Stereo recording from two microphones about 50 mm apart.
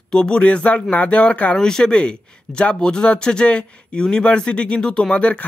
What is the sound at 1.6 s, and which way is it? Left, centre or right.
Speech, centre.